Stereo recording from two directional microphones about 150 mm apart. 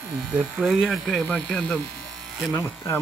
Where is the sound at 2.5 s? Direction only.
15° left (ahead or behind).